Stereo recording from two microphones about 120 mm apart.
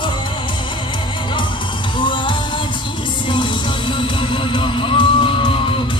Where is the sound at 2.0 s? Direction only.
40° left (ahead or behind).